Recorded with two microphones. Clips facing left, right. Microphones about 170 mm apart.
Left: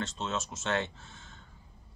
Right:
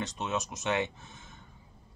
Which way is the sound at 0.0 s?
15° right (ahead or behind).